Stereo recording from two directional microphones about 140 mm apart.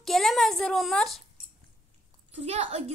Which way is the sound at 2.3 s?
50° right (ahead or behind).